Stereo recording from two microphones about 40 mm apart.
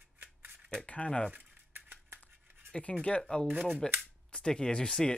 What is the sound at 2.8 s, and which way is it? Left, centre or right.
Speech, left.